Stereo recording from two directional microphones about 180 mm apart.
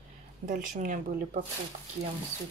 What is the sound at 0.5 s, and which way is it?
Speech, 50° right (ahead or behind).